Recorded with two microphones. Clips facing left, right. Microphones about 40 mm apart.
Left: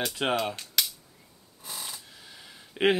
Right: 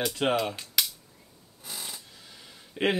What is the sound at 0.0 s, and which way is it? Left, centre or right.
Speech, centre.